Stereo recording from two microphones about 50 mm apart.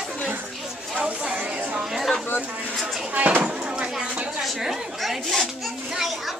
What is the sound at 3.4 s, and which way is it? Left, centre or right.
Speech, centre.